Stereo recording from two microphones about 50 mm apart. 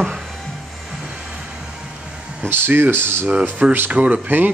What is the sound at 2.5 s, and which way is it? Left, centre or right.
Speech, right.